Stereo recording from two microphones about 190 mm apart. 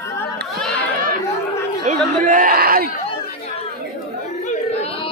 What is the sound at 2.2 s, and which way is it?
Speech, 45° right (ahead or behind).